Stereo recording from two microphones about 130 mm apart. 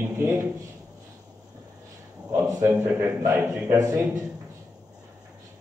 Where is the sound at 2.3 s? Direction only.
25° right (ahead or behind).